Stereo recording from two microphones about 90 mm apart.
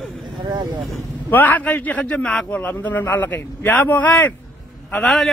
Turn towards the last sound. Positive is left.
turn(degrees=5)  # may be behind; listen again after turning